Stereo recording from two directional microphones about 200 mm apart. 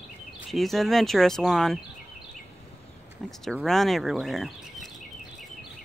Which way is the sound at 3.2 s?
Centre (ahead or behind).